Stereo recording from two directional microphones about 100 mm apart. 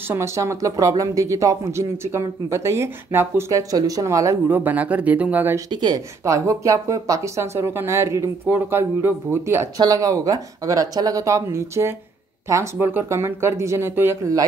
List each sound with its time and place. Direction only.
0.1 s speech: 30° right (ahead or behind)
4.5 s speech: 20° right (ahead or behind)
5.7 s speech: 45° right (ahead or behind); by 9.7 s 25° right (ahead or behind)
9.8 s speech: 35° right (ahead or behind)